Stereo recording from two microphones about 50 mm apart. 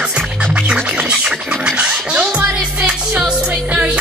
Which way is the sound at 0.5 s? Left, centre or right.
Centre.